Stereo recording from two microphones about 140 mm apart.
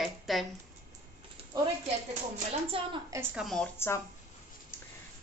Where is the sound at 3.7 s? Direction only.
15° left (ahead or behind).